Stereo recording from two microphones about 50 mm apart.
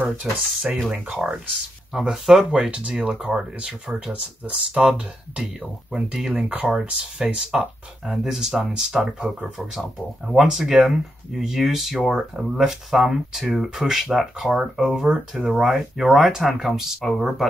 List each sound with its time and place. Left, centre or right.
0.3 s speech: centre
0.8 s speech: right
2.0 s speech: centre
2.5 s speech: centre
5.4 s speech: centre
9.6 s speech: centre
12.4 s speech: centre